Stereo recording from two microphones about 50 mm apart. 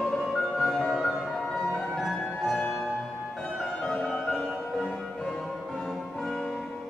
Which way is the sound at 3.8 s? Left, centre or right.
Centre.